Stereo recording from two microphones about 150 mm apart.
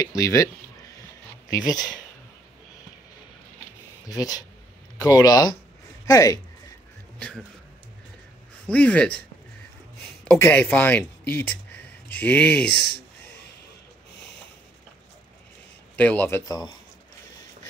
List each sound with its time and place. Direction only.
0.0 s speech: 20° left (ahead or behind)
1.5 s speech: 25° left (ahead or behind)
4.1 s speech: 25° left (ahead or behind)
7.2 s speech: 5° left (ahead or behind)
8.6 s a man's voice: 10° left (ahead or behind)
10.2 s speech: 10° left (ahead or behind)
16.0 s a man's voice: 10° left (ahead or behind)